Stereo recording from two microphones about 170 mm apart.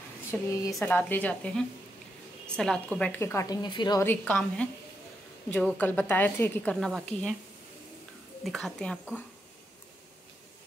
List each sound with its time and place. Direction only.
0.3 s a woman's voice: 10° left (ahead or behind); by 4.0 s 25° left (ahead or behind)
4.0 s a woman's voice: 10° left (ahead or behind)
8.5 s a woman's voice: centre (ahead or behind)